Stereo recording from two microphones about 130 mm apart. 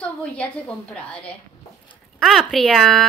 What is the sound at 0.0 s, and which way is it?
Speech, 10° left (ahead or behind).